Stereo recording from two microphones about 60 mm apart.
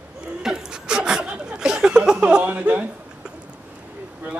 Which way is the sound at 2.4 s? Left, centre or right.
Right.